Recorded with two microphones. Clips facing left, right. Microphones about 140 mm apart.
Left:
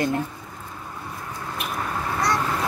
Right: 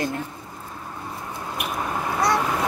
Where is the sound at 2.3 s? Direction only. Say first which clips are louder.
Right 2 dB; 15° right (ahead or behind).